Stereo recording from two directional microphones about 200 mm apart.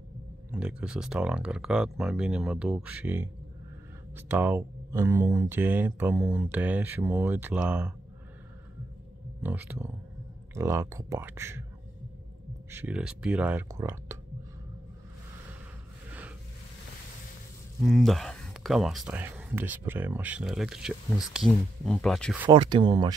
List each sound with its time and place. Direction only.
0.5 s speech: 5° right (ahead or behind)
9.4 s speech: 10° right (ahead or behind)
12.7 s speech: 5° right (ahead or behind)
16.1 s a sound: 5° right (ahead or behind)
17.7 s speech: centre (ahead or behind)
22.5 s speech: 25° right (ahead or behind)